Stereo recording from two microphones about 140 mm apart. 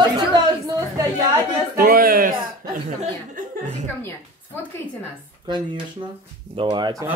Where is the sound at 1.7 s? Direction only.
90° right.